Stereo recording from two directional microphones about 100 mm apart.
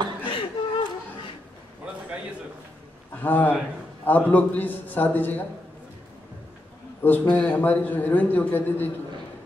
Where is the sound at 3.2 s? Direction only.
20° left (ahead or behind).